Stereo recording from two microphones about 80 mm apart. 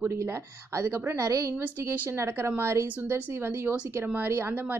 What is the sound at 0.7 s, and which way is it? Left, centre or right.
Speech, right.